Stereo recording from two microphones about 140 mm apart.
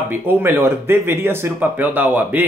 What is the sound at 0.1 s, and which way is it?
Speech, 15° right (ahead or behind).